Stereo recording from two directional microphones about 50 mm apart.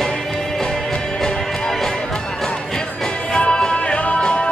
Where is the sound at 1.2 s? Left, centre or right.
Centre.